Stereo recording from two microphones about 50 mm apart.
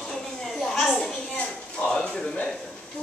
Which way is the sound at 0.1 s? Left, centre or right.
Centre.